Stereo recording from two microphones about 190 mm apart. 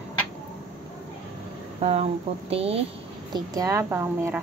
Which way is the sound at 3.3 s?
20° right (ahead or behind).